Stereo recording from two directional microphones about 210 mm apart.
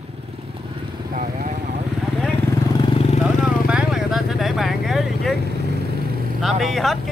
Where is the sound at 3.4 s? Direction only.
Centre (ahead or behind).